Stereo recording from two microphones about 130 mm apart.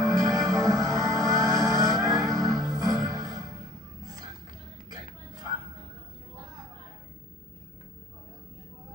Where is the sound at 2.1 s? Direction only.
30° right (ahead or behind).